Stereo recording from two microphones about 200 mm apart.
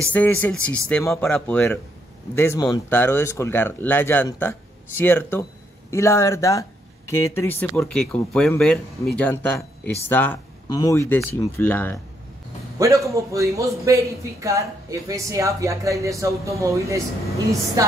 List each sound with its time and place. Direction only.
0.0 s speech: 10° left (ahead or behind)
12.7 s a man's voice: 15° right (ahead or behind)